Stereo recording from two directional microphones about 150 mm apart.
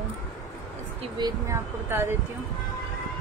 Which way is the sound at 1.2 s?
15° right (ahead or behind).